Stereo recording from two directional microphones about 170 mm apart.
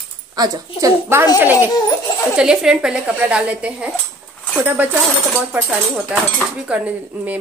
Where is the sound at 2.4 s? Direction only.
5° right (ahead or behind).